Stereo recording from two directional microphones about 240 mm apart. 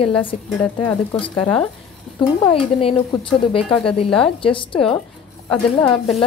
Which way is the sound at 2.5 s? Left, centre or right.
Left.